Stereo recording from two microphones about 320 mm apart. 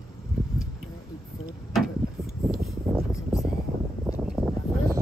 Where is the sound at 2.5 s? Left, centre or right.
Centre.